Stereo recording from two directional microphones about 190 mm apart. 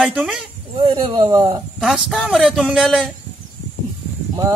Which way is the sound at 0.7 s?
25° right (ahead or behind).